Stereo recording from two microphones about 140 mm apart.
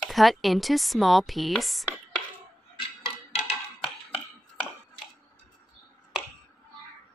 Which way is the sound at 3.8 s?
5° left (ahead or behind).